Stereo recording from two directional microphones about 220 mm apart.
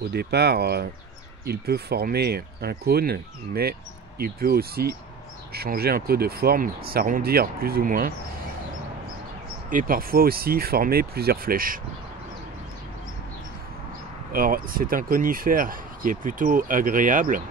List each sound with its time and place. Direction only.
0.1 s speech: 50° right (ahead or behind)
9.7 s speech: 40° right (ahead or behind)
14.3 s speech: 40° right (ahead or behind)